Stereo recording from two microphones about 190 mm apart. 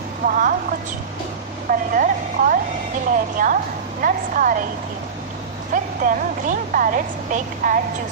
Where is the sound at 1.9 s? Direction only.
45° right (ahead or behind).